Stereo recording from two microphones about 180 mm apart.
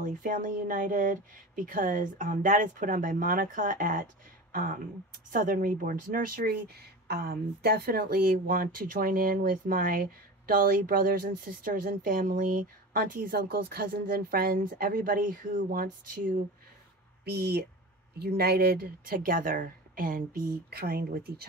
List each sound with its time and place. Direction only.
0.0 s speech: 50° right (ahead or behind)
17.2 s speech: 60° right (ahead or behind)